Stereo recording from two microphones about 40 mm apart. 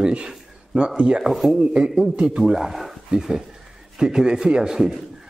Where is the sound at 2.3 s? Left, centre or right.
Centre.